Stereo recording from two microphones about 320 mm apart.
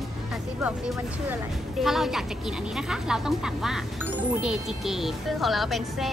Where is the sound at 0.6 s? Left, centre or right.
Centre.